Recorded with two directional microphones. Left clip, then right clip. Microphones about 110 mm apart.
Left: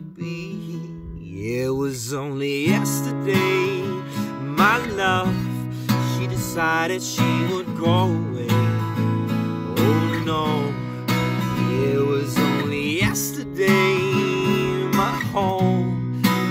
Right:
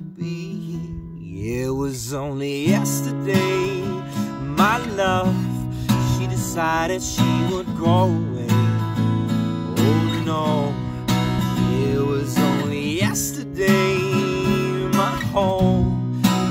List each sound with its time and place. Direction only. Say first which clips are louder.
1.5 s music: left 1 dB; 40° right (ahead or behind)
5.9 s music: right 1 dB; 45° right (ahead or behind); by 15.8 s 30° right (ahead or behind)